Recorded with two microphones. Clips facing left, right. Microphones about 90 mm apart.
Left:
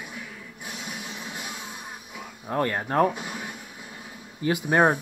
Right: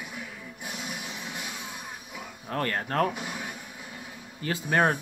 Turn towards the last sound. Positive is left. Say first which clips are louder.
# left 4 dB
turn(degrees=20)  # may be behind; listen again after turning